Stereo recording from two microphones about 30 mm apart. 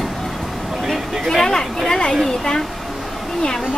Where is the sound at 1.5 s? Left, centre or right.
Centre.